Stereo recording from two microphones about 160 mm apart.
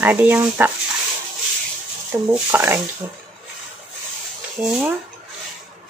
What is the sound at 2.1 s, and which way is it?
Speech, 15° right (ahead or behind).